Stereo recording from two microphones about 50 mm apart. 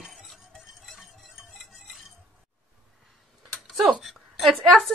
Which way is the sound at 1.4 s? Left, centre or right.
Centre.